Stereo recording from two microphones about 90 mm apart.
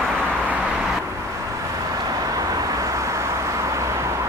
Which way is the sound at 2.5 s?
35° right (ahead or behind).